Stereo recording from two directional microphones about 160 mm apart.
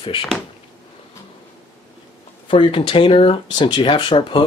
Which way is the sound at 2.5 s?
35° left (ahead or behind).